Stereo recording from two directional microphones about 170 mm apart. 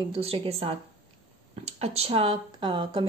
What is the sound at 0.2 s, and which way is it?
Speech, 35° right (ahead or behind).